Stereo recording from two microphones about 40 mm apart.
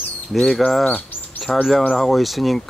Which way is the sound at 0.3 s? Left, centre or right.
Centre.